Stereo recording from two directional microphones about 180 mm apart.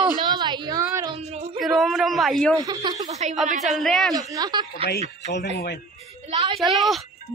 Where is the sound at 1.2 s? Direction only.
35° right (ahead or behind).